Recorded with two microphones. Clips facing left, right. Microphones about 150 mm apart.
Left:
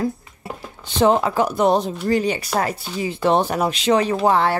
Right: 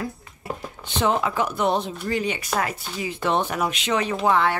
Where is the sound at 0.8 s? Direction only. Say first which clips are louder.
Left 6 dB; 35° left (ahead or behind).